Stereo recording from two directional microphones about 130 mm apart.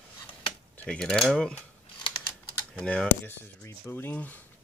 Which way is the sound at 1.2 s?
5° left (ahead or behind).